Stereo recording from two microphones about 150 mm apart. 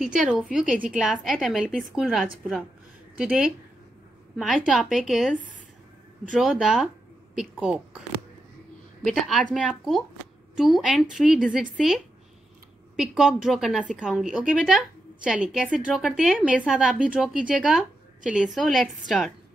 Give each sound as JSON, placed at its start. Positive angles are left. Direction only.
{"t": 0.3, "sound": "a woman's voice", "side_deg": -5}
{"t": 9.0, "sound": "a woman's voice", "side_deg": 0}